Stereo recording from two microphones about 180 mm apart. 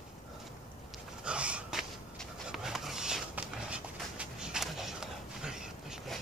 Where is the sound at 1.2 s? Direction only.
5° right (ahead or behind).